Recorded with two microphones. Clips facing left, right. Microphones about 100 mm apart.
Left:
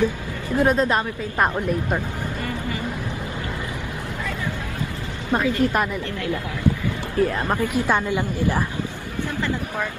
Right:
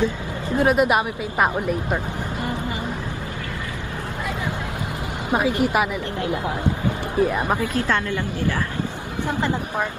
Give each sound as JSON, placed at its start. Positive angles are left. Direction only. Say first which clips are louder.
{"t": 0.6, "sound": "a woman's voice", "louder": "right 1 dB", "side_deg": -10}
{"t": 5.3, "sound": "a woman's voice", "louder": "even", "side_deg": -15}
{"t": 7.2, "sound": "a woman's voice", "louder": "even", "side_deg": -10}
{"t": 7.6, "sound": "a woman's voice", "louder": "left 1 dB", "side_deg": 15}
{"t": 9.4, "sound": "speech", "louder": "right 2 dB", "side_deg": -20}